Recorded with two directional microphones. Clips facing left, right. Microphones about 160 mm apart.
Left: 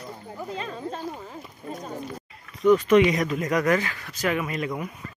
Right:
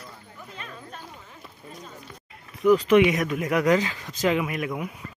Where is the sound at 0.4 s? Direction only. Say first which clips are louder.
Left 10 dB; 30° left (ahead or behind).